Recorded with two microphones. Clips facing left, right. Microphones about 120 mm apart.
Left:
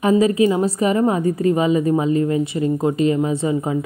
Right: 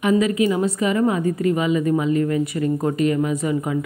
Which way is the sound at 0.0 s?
30° left (ahead or behind).